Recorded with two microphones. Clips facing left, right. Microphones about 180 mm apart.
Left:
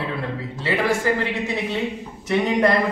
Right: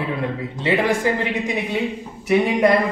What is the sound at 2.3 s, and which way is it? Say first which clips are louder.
Speech: right 3 dB; 10° right (ahead or behind).